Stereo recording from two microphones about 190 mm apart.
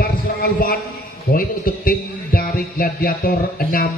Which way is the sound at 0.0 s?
50° left (ahead or behind).